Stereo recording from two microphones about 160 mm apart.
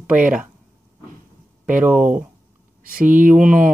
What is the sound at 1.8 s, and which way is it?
Speech, 10° right (ahead or behind).